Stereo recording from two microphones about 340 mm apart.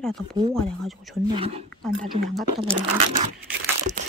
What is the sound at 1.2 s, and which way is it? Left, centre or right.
Speech, centre.